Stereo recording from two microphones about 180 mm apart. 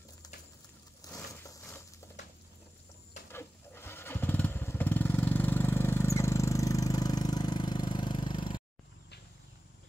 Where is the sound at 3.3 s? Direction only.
15° left (ahead or behind).